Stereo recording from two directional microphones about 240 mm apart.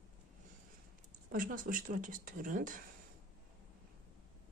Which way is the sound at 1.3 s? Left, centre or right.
Right.